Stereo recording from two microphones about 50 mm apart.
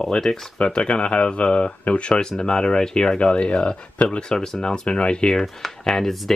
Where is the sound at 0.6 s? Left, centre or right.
Left.